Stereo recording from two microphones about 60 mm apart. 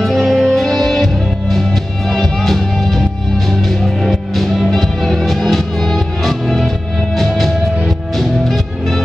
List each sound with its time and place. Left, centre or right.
0.0 s music: centre